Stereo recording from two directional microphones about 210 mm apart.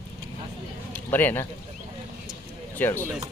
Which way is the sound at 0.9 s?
10° left (ahead or behind).